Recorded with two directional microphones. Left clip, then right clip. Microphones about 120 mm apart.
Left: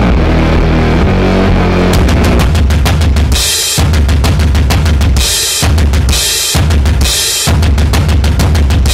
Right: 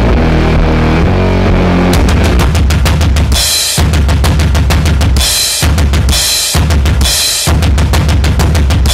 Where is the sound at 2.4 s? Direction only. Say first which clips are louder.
Even; 45° right (ahead or behind).